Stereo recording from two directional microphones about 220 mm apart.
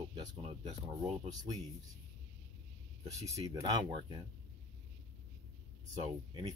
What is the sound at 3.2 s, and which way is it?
Speech, 15° right (ahead or behind).